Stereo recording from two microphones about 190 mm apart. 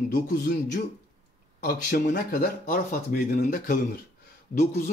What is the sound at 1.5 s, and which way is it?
Speech, 50° left (ahead or behind).